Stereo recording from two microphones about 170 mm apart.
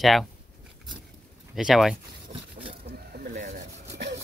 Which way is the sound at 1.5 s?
Centre (ahead or behind).